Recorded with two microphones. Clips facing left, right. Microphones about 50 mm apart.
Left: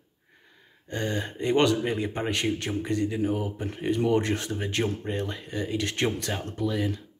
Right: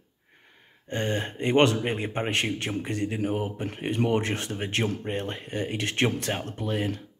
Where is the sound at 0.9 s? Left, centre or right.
Right.